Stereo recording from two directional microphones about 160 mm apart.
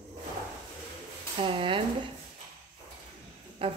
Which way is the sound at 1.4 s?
35° right (ahead or behind).